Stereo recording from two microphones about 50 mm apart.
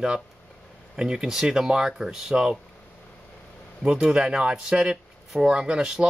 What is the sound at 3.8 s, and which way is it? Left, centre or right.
Speech, centre.